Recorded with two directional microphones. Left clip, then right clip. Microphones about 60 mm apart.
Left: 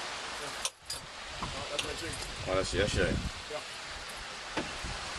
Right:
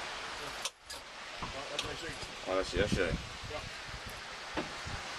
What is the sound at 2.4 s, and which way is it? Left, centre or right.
Speech, centre.